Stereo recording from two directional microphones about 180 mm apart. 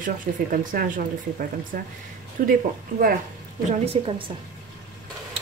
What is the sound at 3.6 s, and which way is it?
Speech, 35° right (ahead or behind).